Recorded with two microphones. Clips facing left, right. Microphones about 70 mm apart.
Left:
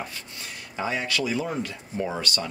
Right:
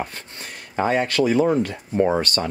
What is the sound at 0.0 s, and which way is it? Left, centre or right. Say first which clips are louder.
Speech: right 5 dB; right.